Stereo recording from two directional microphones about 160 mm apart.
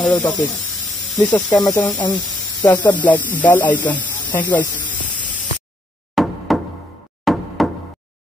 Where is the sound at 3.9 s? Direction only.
10° left (ahead or behind).